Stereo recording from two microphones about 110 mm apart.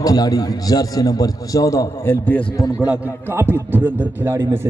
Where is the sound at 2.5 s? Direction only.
35° left (ahead or behind).